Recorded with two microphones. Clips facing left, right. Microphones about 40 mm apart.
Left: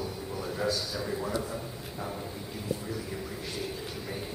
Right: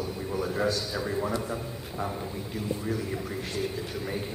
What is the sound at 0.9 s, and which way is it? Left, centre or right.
Speech, centre.